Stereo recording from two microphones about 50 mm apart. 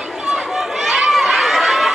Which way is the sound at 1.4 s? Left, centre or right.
Centre.